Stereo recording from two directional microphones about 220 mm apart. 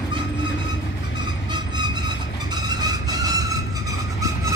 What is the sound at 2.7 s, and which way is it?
Music, 20° right (ahead or behind).